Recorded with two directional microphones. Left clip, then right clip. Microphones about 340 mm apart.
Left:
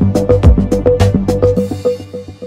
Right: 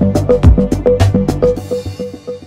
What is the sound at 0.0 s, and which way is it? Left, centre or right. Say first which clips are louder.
Music: even; centre.